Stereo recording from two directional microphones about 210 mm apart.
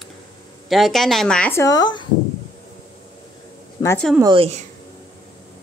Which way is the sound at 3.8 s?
15° left (ahead or behind).